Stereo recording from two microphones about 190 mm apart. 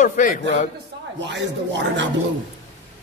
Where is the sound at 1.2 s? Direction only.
70° right (ahead or behind).